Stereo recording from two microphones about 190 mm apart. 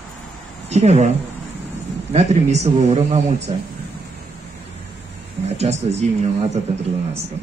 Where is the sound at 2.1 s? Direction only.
35° right (ahead or behind).